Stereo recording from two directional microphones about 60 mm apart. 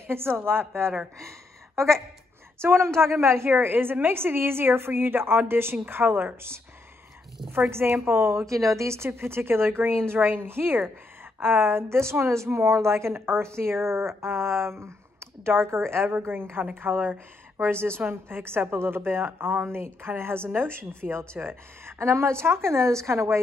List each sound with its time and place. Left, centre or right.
0.0 s a woman's voice: right
2.6 s a woman's voice: right
7.7 s a woman's voice: right
21.9 s a woman's voice: right